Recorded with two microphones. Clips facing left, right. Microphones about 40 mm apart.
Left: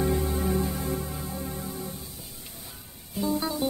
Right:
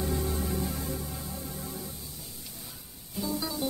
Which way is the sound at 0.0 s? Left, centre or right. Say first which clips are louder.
Left 5 dB; left.